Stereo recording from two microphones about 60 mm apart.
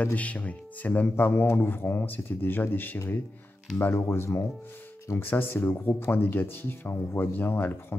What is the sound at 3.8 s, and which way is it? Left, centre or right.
Speech, left.